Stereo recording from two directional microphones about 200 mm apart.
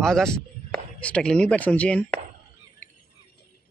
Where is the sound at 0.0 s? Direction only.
Centre (ahead or behind).